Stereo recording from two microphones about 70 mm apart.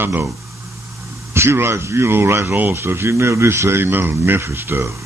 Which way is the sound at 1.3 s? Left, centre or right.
Right.